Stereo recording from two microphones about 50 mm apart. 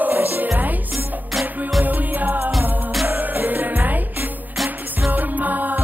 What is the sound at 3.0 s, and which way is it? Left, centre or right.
Music, right.